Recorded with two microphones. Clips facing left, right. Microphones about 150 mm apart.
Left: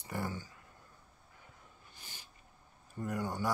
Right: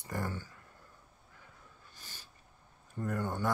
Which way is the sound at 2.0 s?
15° left (ahead or behind).